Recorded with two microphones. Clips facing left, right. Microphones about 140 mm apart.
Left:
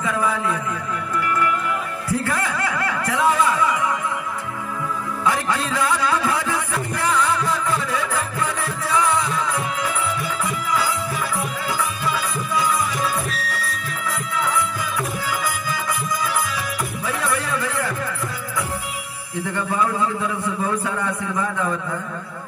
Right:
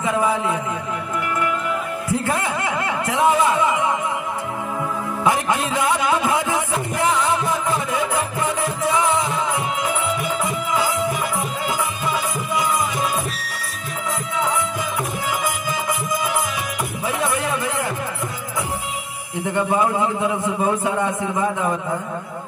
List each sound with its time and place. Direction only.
0.0 s a man's voice: 20° right (ahead or behind)
2.0 s a sound: 20° right (ahead or behind)
5.2 s music: 20° right (ahead or behind)
10.4 s music: 20° right (ahead or behind)
12.1 s music: 20° right (ahead or behind)
14.4 s music: 20° right (ahead or behind)
19.3 s a man's voice: 20° right (ahead or behind)